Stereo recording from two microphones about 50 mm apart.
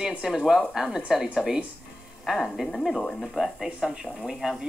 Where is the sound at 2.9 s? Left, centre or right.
Centre.